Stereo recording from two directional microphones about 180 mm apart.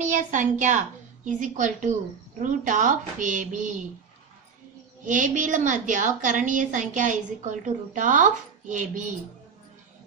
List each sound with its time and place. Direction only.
0.0 s a woman's voice: 45° right (ahead or behind)
5.0 s a woman's voice: 45° right (ahead or behind)